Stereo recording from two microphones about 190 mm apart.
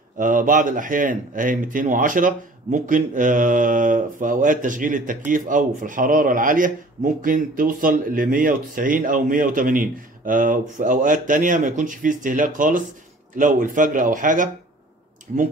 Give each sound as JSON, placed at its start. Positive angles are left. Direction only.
{"t": 0.2, "sound": "speech", "side_deg": -45}